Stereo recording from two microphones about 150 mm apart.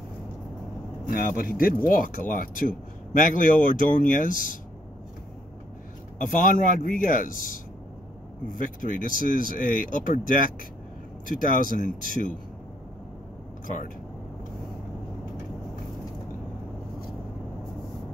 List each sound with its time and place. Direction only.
1.0 s speech: 70° left (ahead or behind)
6.1 s speech: 60° left (ahead or behind)